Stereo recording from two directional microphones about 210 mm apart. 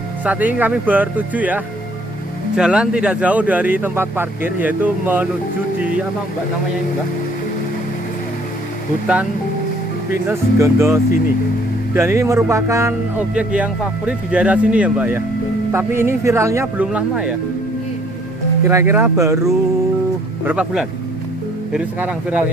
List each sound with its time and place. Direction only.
0.2 s speech: 5° right (ahead or behind)
9.0 s speech: 5° right (ahead or behind)
18.7 s speech: 10° right (ahead or behind)